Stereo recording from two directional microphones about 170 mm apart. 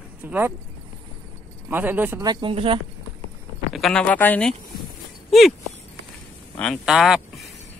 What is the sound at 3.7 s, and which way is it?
Speech, 5° left (ahead or behind).